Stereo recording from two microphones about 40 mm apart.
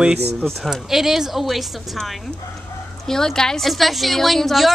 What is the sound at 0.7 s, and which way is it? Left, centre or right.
Speech, centre.